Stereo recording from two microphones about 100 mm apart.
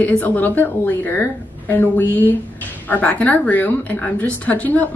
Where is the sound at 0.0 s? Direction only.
15° left (ahead or behind).